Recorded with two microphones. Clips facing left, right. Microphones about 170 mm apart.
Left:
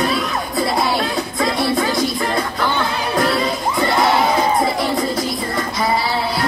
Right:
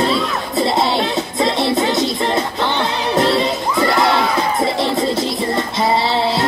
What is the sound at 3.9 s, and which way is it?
Crowd, 25° left (ahead or behind).